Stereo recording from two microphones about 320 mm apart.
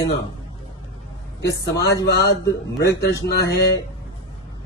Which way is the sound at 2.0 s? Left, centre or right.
Left.